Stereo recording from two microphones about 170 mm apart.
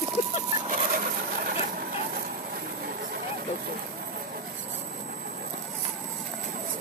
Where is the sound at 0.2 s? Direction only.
40° left (ahead or behind).